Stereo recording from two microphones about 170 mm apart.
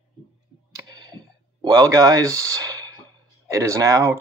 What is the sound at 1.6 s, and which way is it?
Speech, 20° right (ahead or behind).